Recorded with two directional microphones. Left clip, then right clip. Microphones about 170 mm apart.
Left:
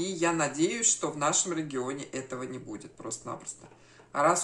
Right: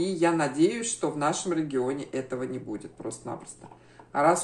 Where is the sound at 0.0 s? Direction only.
15° left (ahead or behind).